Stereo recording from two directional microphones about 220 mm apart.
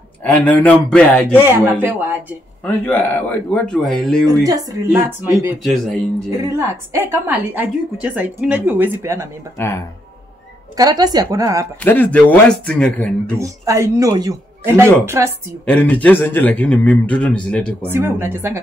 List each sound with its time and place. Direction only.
0.2 s speech: 5° left (ahead or behind)
1.3 s a woman's voice: 10° right (ahead or behind)
2.6 s a man's voice: 10° left (ahead or behind)
4.5 s a woman's voice: 15° right (ahead or behind)
9.6 s a man's voice: 10° left (ahead or behind)
10.8 s a woman's voice: 15° right (ahead or behind)
11.8 s speech: 10° left (ahead or behind)
13.4 s a woman's voice: 15° right (ahead or behind)
15.6 s a man's voice: 5° left (ahead or behind)
17.8 s a woman's voice: 10° right (ahead or behind)